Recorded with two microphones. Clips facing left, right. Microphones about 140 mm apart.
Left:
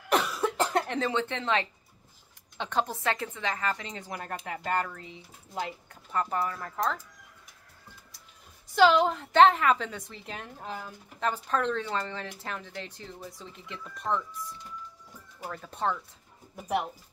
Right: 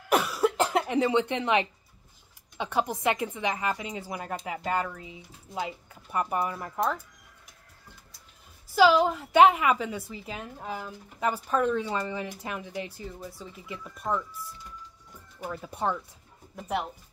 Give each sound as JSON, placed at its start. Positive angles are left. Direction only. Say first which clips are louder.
{"t": 0.1, "sound": "cough", "louder": "right 3 dB", "side_deg": -10}
{"t": 0.7, "sound": "a woman's voice", "louder": "right 3 dB", "side_deg": -10}
{"t": 8.7, "sound": "a woman's voice", "louder": "right 1 dB", "side_deg": -5}
{"t": 15.5, "sound": "a woman's voice", "louder": "right 1 dB", "side_deg": -10}
{"t": 16.5, "sound": "speech", "louder": "left 1 dB", "side_deg": 5}